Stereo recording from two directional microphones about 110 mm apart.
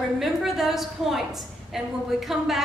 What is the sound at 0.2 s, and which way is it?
A woman's voice, centre (ahead or behind).